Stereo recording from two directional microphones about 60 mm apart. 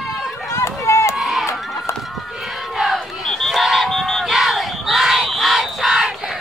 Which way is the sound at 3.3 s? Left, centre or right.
Centre.